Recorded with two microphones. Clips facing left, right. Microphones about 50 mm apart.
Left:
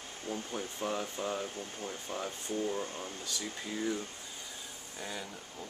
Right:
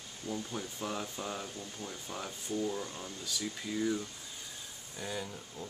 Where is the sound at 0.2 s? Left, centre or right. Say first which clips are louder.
Even; left.